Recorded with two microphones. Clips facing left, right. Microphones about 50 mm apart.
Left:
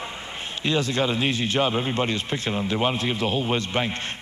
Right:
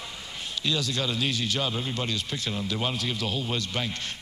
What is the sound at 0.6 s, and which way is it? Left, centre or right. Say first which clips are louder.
Speech: left 6 dB; left.